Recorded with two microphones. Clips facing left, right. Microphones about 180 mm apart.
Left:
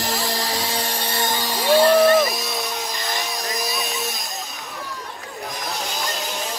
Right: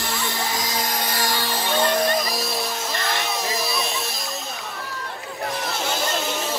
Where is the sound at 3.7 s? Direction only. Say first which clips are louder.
Even; centre (ahead or behind).